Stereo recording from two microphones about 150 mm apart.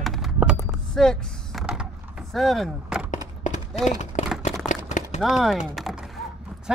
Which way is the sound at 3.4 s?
55° left (ahead or behind).